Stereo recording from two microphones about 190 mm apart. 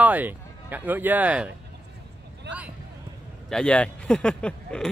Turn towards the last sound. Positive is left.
turn(degrees=5)  # may be behind; listen again after turning